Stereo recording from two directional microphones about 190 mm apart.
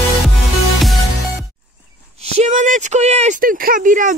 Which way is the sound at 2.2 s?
35° right (ahead or behind).